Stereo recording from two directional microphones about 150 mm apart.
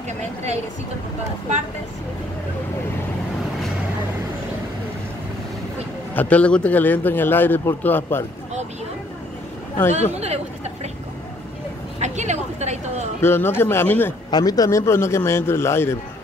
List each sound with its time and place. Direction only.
0.2 s speech: 50° right (ahead or behind)
6.1 s a man's voice: 10° left (ahead or behind)
10.2 s chatter: 45° right (ahead or behind)
12.0 s speech: 50° right (ahead or behind)
13.2 s a man's voice: 15° left (ahead or behind)
14.3 s a man's voice: 25° left (ahead or behind)